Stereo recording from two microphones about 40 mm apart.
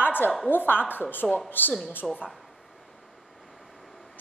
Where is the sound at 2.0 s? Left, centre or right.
Centre.